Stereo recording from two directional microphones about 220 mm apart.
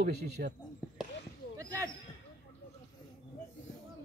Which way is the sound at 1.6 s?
15° right (ahead or behind).